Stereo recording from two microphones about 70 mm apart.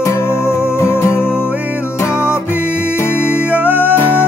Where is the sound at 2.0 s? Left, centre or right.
Left.